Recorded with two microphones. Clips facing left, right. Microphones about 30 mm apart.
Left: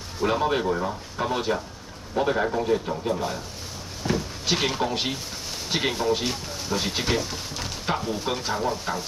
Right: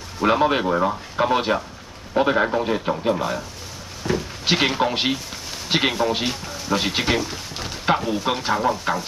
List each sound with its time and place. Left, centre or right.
0.2 s speech: right
4.1 s a sound: centre
4.5 s speech: right
7.2 s speech: centre
8.1 s speech: right